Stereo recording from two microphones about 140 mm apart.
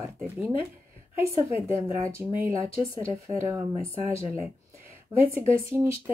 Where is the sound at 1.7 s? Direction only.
20° right (ahead or behind).